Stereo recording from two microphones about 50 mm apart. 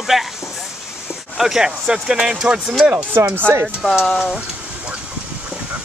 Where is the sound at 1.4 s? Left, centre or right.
Centre.